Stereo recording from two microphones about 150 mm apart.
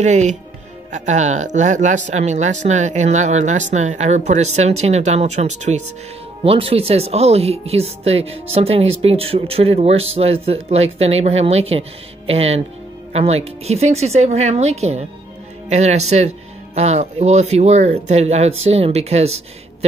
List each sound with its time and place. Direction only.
0.0 s speech: 50° right (ahead or behind)
6.4 s speech: 40° right (ahead or behind)